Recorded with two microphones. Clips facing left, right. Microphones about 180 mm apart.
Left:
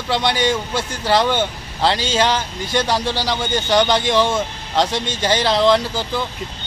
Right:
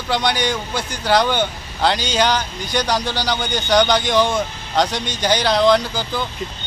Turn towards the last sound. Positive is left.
turn(degrees=0)  # may be behind; listen again after turning